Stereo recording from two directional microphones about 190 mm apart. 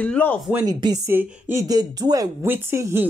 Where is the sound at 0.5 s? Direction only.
20° right (ahead or behind).